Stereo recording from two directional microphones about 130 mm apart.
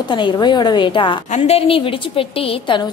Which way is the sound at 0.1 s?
35° left (ahead or behind).